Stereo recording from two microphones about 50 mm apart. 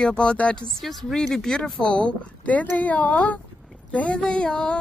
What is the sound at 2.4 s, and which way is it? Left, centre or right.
Speech, left.